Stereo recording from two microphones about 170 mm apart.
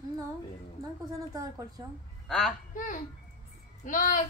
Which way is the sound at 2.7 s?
50° left (ahead or behind).